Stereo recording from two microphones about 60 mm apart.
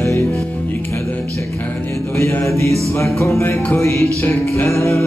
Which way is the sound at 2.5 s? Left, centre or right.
Left.